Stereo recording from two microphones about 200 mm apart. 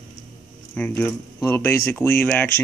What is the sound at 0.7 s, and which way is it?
Speech, 10° left (ahead or behind).